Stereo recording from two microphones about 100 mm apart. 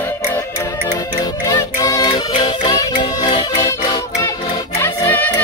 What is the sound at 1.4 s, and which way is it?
Music, 35° left (ahead or behind).